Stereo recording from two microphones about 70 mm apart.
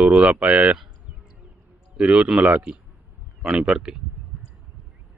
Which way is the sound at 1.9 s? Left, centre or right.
Centre.